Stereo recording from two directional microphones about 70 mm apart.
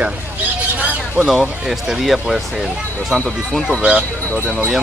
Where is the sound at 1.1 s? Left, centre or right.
Centre.